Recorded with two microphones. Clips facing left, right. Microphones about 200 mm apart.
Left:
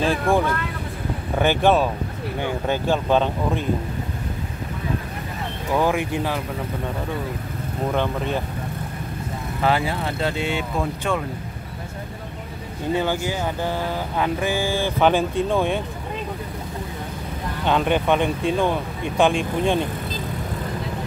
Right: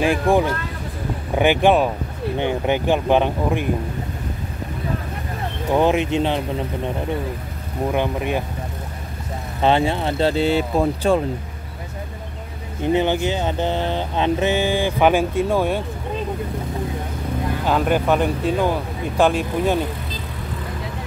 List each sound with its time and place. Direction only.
0.0 s speech: 15° right (ahead or behind)
5.7 s speech: 20° right (ahead or behind)
7.9 s speech: 15° right (ahead or behind)
9.6 s speech: 25° right (ahead or behind)
12.9 s speech: 20° right (ahead or behind)
17.6 s speech: 5° right (ahead or behind)